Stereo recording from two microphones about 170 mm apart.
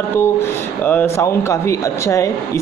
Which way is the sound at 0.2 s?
10° left (ahead or behind).